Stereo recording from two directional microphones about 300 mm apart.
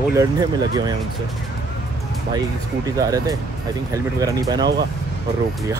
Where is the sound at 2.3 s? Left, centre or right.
Centre.